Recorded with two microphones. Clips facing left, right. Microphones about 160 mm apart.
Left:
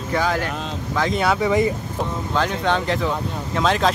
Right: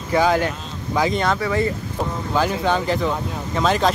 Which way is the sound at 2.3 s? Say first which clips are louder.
Right 2 dB; 5° right (ahead or behind).